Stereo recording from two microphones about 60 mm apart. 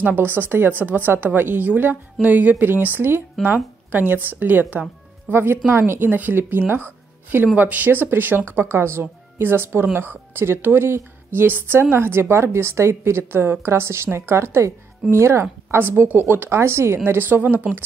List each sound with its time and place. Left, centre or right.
0.0 s a woman's voice: right
5.3 s a woman's voice: right